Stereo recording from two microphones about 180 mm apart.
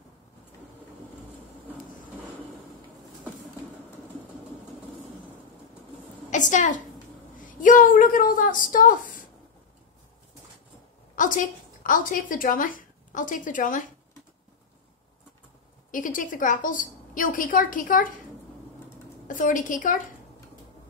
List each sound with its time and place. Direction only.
6.3 s a woman's voice: 45° left (ahead or behind)
11.1 s a woman's voice: 45° left (ahead or behind)
15.9 s a woman's voice: 45° left (ahead or behind)
19.2 s a woman's voice: 45° left (ahead or behind)